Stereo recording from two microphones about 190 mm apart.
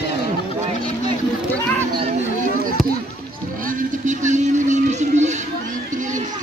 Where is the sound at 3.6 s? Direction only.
40° right (ahead or behind).